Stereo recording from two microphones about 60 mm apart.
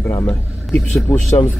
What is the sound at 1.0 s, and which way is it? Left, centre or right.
Speech, left.